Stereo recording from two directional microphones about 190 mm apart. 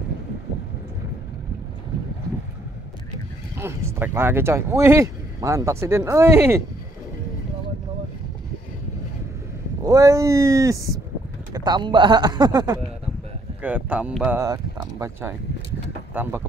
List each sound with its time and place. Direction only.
3.5 s speech: 10° right (ahead or behind)
9.8 s speech: 15° right (ahead or behind)
13.6 s speech: 10° right (ahead or behind)